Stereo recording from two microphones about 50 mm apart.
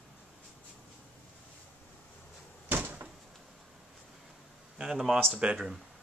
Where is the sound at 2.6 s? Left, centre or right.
Right.